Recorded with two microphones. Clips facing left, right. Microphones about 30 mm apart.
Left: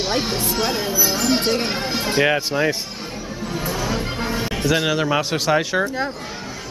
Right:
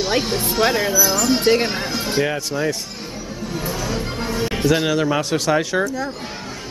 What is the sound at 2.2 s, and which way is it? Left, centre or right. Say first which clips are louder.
Speech: left 3 dB; left.